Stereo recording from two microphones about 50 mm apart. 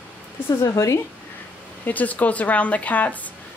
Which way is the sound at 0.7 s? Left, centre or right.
Left.